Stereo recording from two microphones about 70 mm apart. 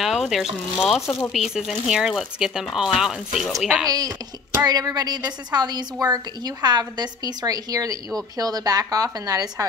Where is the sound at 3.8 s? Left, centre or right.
Right.